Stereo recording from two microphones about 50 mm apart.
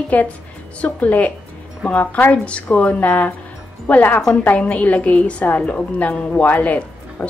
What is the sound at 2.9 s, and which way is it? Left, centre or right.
A woman's voice, left.